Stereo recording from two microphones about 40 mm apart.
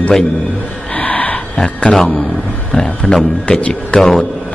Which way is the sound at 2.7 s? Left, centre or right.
Left.